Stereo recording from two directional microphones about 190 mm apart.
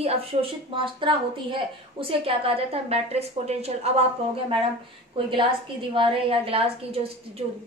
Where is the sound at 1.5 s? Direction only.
30° right (ahead or behind).